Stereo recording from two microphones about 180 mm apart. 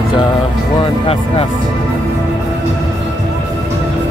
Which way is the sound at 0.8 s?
30° left (ahead or behind).